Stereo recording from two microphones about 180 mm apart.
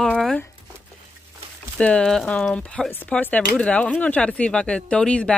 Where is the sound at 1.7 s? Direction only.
5° left (ahead or behind).